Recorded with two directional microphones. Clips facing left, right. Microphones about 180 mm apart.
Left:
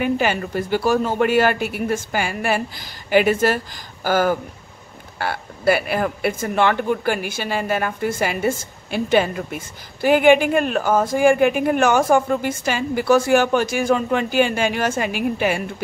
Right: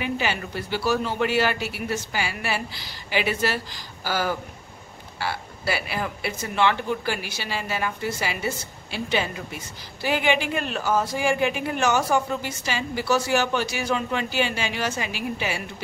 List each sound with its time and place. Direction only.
0.0 s speech: 50° left (ahead or behind)